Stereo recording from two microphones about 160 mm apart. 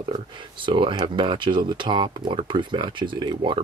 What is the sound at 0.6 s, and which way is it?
Speech, 30° right (ahead or behind).